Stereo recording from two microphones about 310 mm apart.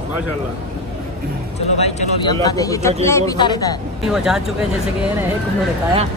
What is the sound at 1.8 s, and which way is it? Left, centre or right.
Speech, centre.